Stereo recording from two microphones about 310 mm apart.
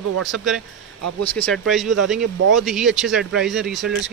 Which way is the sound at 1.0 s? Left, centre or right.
Right.